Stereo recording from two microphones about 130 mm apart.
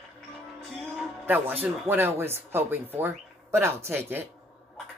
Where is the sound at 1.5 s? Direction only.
15° right (ahead or behind).